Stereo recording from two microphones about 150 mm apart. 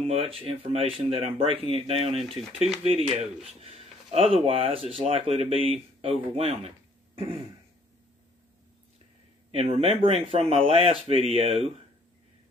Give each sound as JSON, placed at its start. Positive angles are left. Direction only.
{"t": 0.0, "sound": "speech", "side_deg": -40}
{"t": 2.2, "sound": "speech", "side_deg": 0}
{"t": 2.8, "sound": "speech", "side_deg": -45}
{"t": 9.5, "sound": "speech", "side_deg": -40}